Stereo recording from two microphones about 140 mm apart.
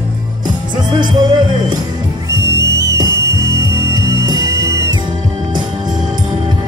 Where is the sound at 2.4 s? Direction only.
20° right (ahead or behind).